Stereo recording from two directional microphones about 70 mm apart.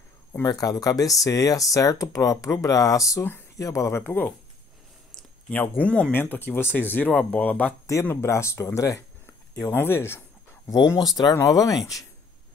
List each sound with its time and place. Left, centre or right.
0.3 s speech: left
4.0 s speech: left
5.5 s speech: left
6.2 s speech: left
7.8 s speech: left
9.2 s speech: left
11.0 s speech: left